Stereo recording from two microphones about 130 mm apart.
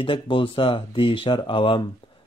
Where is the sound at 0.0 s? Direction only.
40° left (ahead or behind).